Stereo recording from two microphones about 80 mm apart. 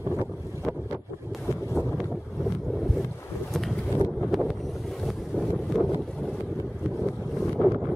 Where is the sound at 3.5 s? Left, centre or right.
Centre.